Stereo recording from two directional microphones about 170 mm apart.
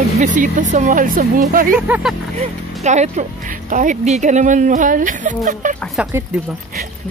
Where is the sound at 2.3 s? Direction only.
40° right (ahead or behind).